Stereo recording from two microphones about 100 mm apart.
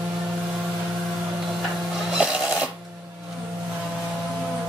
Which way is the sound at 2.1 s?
5° right (ahead or behind).